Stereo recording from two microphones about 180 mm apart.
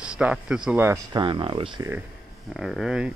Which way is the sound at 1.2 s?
25° right (ahead or behind).